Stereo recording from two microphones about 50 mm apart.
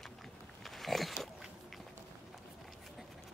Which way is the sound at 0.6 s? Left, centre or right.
Centre.